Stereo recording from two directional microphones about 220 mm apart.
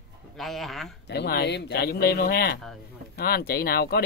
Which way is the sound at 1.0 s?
45° left (ahead or behind).